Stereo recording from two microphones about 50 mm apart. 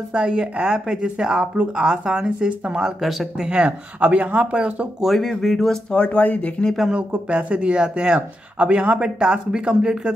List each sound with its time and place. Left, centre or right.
0.1 s speech: centre
3.0 s speech: centre
3.4 s speech: right
5.0 s speech: centre
5.9 s speech: left
7.2 s speech: right